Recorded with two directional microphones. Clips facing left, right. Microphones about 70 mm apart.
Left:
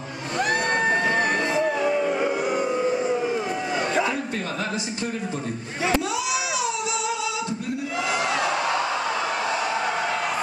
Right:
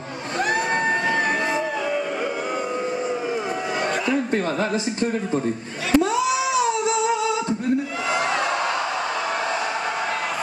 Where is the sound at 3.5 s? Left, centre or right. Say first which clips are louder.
Right 1 dB; right.